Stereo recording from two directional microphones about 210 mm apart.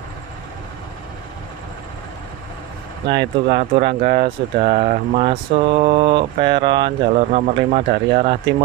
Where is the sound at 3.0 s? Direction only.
55° right (ahead or behind).